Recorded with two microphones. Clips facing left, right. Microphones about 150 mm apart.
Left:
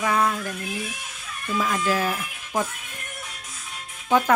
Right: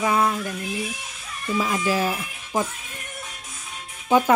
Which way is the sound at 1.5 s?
15° right (ahead or behind).